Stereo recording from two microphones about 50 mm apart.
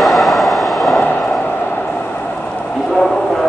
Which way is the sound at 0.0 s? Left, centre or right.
Centre.